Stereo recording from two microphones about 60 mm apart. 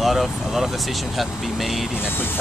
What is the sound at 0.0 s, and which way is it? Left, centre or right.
Vehicle, centre.